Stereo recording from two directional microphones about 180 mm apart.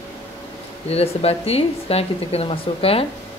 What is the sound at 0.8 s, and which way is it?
Speech, 35° left (ahead or behind).